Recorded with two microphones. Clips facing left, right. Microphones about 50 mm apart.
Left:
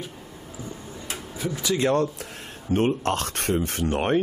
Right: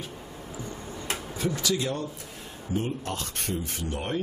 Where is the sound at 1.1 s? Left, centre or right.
Centre.